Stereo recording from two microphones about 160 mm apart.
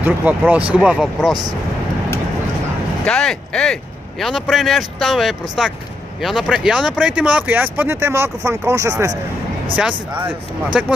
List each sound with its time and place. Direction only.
0.0 s speech: 10° right (ahead or behind)
3.1 s speech: 5° left (ahead or behind); by 9.1 s 20° right (ahead or behind)
9.8 s speech: 10° right (ahead or behind)